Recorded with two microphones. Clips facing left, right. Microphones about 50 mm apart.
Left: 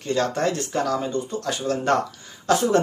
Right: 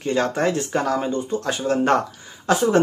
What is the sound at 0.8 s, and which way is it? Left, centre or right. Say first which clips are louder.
A man's voice: right 2 dB; right.